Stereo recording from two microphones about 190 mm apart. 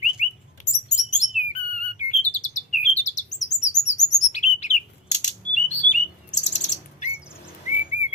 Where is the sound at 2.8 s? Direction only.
40° left (ahead or behind).